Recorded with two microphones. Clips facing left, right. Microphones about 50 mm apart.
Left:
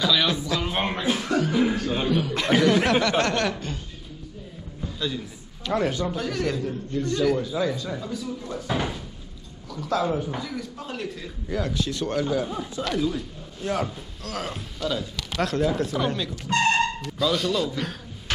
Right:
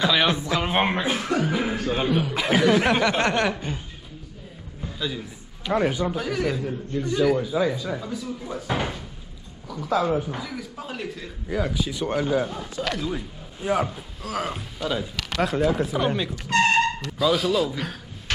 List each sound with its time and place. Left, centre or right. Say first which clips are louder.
0.0 s speech: right 2 dB; right
4.8 s a sound: even; centre
5.7 s speech: right 2 dB; centre
12.7 s speech: left 1 dB; right
13.1 s speech: right 1 dB; centre